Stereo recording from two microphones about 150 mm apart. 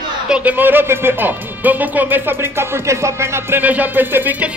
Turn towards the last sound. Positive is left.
turn(degrees=-10)  # may be behind; listen again after turning